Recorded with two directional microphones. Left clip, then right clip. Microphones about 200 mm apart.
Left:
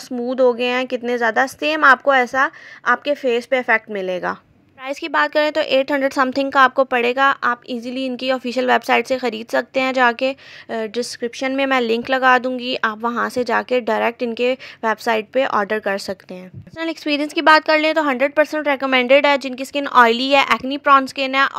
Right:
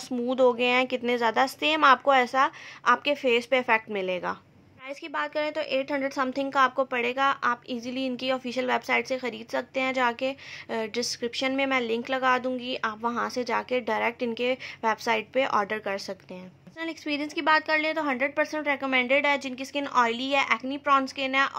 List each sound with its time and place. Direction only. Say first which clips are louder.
0.3 s a woman's voice: left 6 dB; 20° left (ahead or behind)
4.8 s a woman's voice: left 13 dB; 45° left (ahead or behind)